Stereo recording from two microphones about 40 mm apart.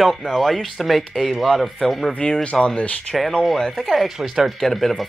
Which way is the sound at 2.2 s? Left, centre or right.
Left.